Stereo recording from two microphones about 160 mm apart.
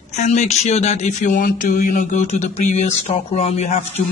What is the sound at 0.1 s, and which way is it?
Speech, 45° left (ahead or behind).